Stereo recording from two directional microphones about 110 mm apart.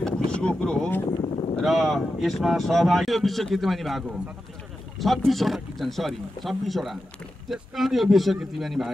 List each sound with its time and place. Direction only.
0.0 s boat: 10° left (ahead or behind)
1.2 s a sound: 55° left (ahead or behind)
1.6 s speech: centre (ahead or behind)